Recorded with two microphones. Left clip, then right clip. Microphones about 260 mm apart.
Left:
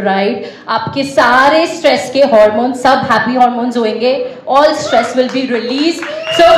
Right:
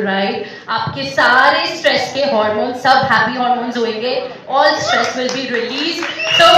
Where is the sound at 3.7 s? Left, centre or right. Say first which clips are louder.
Left 5 dB; left.